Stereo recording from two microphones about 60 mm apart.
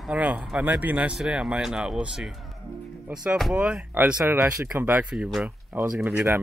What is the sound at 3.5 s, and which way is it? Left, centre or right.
Speech, centre.